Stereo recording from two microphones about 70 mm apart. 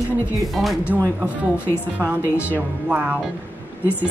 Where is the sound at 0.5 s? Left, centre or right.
Centre.